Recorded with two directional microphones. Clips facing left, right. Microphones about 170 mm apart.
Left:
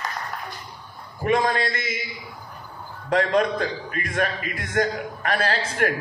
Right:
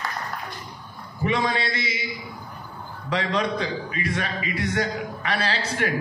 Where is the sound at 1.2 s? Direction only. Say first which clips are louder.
Left 3 dB; 50° left (ahead or behind).